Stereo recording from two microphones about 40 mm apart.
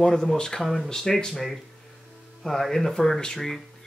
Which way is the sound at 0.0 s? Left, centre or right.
Centre.